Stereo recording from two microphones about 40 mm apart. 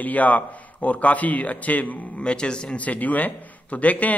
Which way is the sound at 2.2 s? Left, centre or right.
Left.